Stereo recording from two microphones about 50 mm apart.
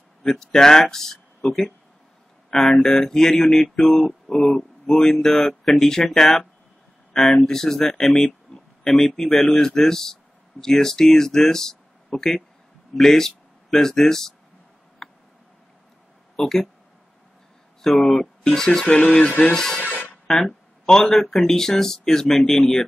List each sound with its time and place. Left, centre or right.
0.2 s speech: centre
2.5 s mantra: centre
6.0 s speech: centre
7.2 s mantra: centre
12.9 s speech: centre
15.0 s tick: centre
16.3 s speech: centre
17.8 s mantra: centre
20.2 s a sound: centre
21.1 s mantra: centre